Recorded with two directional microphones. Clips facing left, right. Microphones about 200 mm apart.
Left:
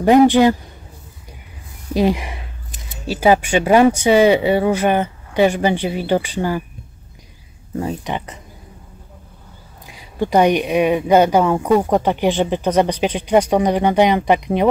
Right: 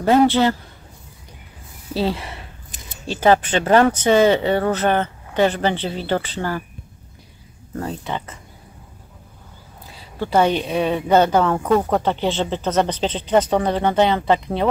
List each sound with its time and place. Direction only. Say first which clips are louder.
0.0 s speech: left 4 dB; 15° left (ahead or behind)
2.0 s speech: left 5 dB; 15° left (ahead or behind)
7.7 s speech: left 3 dB; 10° left (ahead or behind)
9.8 s speech: left 5 dB; 15° left (ahead or behind)